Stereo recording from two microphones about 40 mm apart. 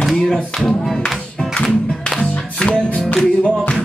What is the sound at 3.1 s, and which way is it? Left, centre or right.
Music, left.